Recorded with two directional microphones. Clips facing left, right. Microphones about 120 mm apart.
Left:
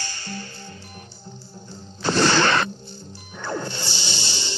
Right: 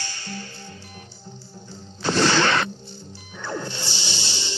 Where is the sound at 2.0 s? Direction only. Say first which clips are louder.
Left 1 dB; 45° left (ahead or behind).